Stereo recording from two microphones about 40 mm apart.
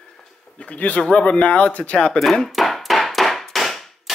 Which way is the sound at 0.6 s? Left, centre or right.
Left.